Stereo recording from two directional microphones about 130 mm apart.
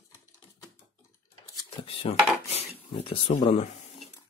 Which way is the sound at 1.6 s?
45° left (ahead or behind).